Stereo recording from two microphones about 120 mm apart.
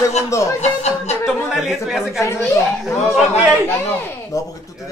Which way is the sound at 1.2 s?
Centre (ahead or behind).